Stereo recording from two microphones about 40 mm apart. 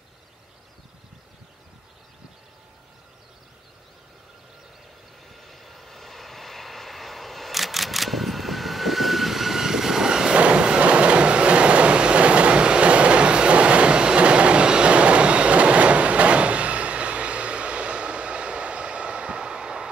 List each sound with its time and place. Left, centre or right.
5.3 s vehicle: centre
10.4 s train: right